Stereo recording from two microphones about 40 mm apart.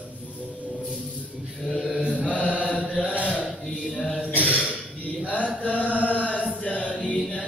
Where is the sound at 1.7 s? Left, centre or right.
Centre.